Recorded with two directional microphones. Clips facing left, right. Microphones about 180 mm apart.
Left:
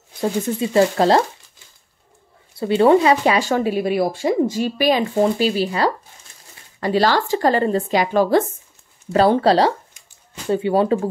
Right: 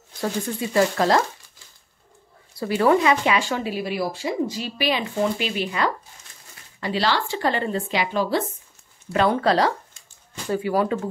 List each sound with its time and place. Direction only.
0.2 s speech: 25° left (ahead or behind)
2.6 s speech: 25° left (ahead or behind); by 8.5 s 50° left (ahead or behind)
9.1 s speech: 35° left (ahead or behind)